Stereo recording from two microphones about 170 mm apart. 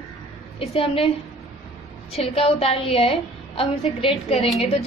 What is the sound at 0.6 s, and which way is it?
Speech, 35° left (ahead or behind).